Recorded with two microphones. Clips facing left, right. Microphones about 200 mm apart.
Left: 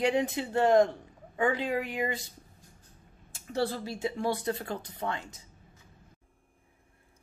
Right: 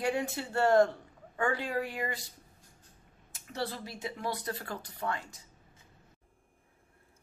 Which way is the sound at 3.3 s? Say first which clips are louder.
Left 6 dB; 30° left (ahead or behind).